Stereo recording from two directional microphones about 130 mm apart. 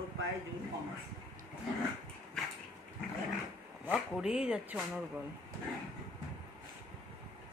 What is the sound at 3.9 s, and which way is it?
Speech, 5° right (ahead or behind).